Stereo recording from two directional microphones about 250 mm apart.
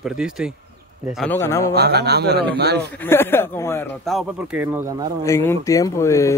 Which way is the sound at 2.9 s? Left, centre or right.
Centre.